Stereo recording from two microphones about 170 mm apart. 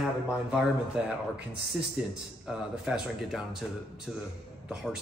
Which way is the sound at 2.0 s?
5° right (ahead or behind).